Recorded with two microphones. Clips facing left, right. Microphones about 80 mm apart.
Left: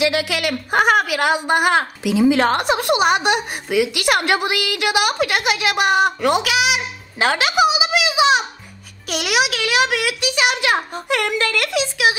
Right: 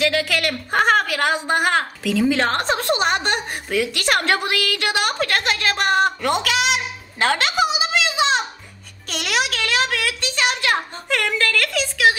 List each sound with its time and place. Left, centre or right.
0.0 s a woman's voice: centre